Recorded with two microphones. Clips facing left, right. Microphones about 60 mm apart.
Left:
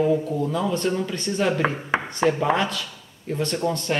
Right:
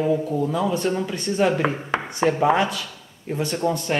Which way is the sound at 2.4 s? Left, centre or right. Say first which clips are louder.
Right 3 dB; centre.